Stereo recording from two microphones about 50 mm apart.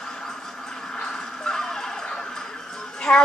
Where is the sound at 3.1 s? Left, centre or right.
Centre.